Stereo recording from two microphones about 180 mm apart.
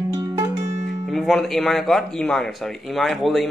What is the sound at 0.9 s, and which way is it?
Speech, centre (ahead or behind).